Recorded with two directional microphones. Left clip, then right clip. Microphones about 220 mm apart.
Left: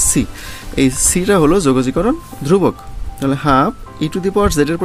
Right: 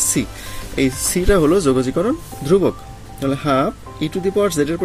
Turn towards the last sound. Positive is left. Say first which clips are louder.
# left 3 dB
turn(degrees=45)  # may be behind; listen again after turning